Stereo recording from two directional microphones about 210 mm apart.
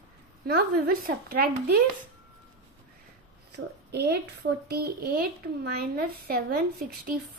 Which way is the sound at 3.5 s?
50° right (ahead or behind).